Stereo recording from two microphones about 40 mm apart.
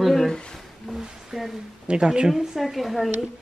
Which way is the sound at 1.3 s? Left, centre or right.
Centre.